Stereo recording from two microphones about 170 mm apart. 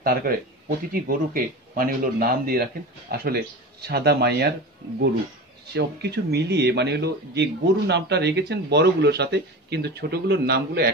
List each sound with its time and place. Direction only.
0.0 s speech: 60° right (ahead or behind)
5.7 s speech: 75° right (ahead or behind)